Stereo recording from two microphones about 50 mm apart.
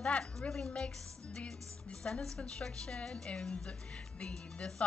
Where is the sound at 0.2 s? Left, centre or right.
Centre.